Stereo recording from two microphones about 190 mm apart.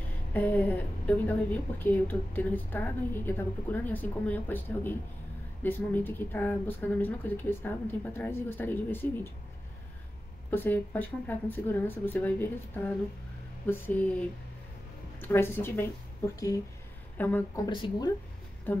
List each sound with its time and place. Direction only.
0.3 s a woman's voice: 10° left (ahead or behind)
10.5 s a woman's voice: 10° left (ahead or behind)
17.6 s speech: 25° left (ahead or behind)